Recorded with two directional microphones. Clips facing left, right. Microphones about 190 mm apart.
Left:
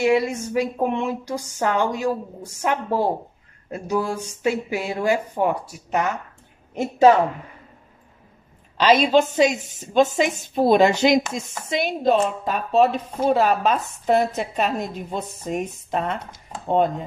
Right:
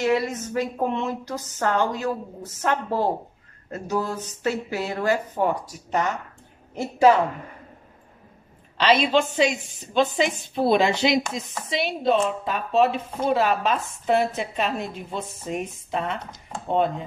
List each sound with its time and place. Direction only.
0.0 s a woman's voice: 10° left (ahead or behind)
9.1 s a woman's voice: 45° left (ahead or behind)